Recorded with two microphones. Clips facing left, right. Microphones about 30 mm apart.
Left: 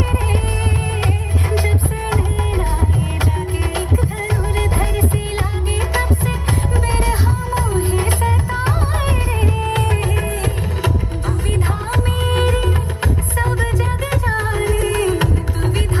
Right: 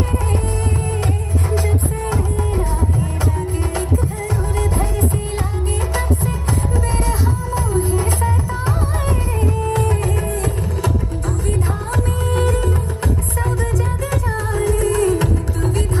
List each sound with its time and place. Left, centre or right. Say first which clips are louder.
1.5 s music: left 1 dB; left
4.6 s music: even; left
7.1 s music: left 1 dB; left
12.3 s music: left 1 dB; left
14.1 s music: left 3 dB; left